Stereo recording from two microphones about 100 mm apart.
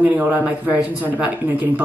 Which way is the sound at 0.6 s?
15° right (ahead or behind).